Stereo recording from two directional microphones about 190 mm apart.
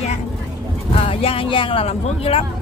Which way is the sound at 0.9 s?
30° left (ahead or behind).